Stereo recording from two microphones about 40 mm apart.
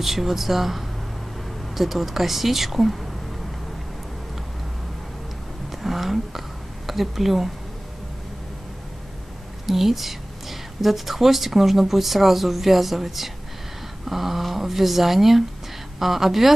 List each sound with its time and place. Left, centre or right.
0.0 s a woman's voice: centre
5.7 s a sound: centre
6.9 s a woman's voice: centre
9.7 s a woman's voice: centre